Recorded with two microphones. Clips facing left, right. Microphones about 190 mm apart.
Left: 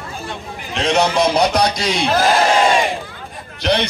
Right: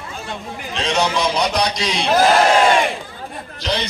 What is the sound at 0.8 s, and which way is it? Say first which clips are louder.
Speech: left 4 dB; 55° left (ahead or behind).